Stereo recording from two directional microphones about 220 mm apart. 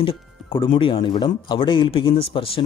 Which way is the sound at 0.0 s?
25° left (ahead or behind).